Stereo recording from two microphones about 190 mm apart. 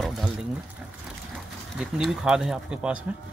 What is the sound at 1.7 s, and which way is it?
Speech, centre (ahead or behind).